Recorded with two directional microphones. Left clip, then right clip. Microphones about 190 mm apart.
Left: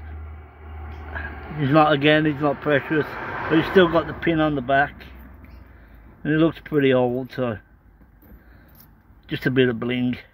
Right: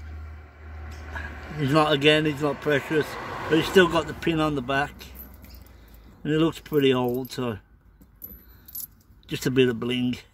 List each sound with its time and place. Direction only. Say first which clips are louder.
0.8 s speech: left 4 dB; 10° right (ahead or behind)
6.2 s speech: left 3 dB; 10° right (ahead or behind)
9.3 s speech: left 2 dB; 10° right (ahead or behind)